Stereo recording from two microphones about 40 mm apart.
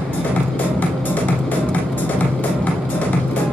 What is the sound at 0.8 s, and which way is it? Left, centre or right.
Music, left.